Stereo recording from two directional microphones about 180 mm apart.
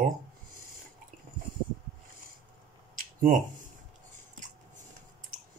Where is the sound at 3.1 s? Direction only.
45° right (ahead or behind).